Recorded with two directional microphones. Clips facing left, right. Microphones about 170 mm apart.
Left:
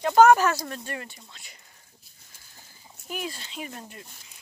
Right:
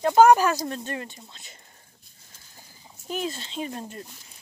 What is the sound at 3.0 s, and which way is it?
Speech, 25° right (ahead or behind).